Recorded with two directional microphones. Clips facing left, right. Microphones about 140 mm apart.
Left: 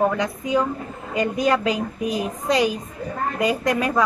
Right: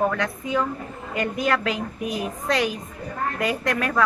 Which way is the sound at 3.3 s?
15° left (ahead or behind).